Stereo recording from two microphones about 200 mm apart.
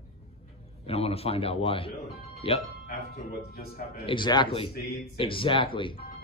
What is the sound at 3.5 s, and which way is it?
Speech, 50° left (ahead or behind).